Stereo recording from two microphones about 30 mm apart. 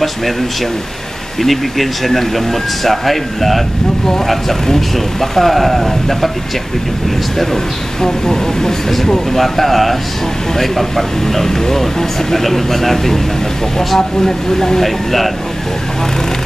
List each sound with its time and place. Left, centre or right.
1.4 s speech: centre
4.6 s speech: centre
8.0 s speech: centre
9.3 s speech: centre